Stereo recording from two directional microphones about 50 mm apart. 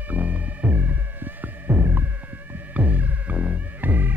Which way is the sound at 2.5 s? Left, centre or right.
Right.